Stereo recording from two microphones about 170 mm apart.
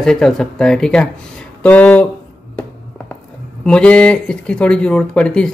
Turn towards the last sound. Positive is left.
turn(degrees=5)  # may be behind; listen again after turning